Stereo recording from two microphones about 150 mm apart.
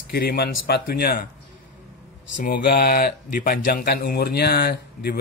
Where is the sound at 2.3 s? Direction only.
80° left.